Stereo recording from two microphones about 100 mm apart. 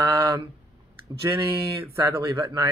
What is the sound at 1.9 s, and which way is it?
Speech, 35° right (ahead or behind).